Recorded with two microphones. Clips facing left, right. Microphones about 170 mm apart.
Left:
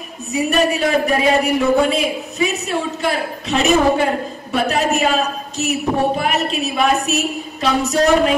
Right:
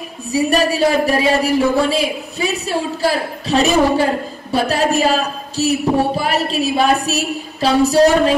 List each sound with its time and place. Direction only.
0.3 s speech: 35° right (ahead or behind)